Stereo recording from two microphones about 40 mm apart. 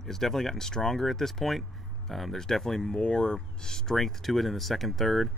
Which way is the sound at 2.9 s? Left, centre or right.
Left.